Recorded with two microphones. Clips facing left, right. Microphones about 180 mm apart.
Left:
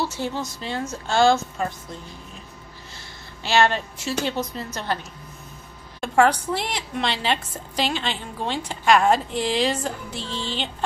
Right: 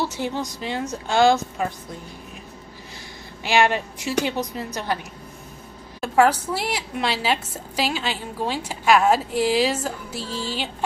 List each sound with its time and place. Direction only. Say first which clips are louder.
0.0 s a woman's voice: right 1 dB; 15° right (ahead or behind)
3.4 s a woman's voice: even; 15° right (ahead or behind)
5.9 s a sound: right 1 dB; 5° right (ahead or behind)
6.5 s a woman's voice: even; 5° right (ahead or behind)